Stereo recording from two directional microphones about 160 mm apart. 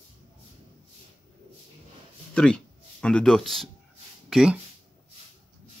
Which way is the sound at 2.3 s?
5° left (ahead or behind).